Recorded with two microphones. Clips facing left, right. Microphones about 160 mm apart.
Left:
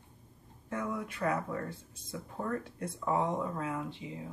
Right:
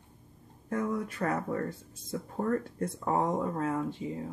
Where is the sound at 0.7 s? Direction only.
40° right (ahead or behind).